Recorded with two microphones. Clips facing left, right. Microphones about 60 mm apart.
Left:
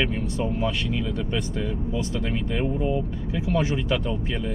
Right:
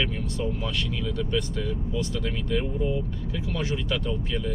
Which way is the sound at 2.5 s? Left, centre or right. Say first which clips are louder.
Left 1 dB; left.